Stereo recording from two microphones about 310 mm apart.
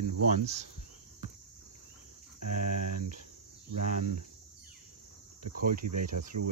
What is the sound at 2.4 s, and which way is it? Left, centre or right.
Cricket, right.